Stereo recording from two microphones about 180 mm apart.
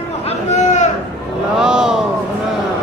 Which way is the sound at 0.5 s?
40° left (ahead or behind).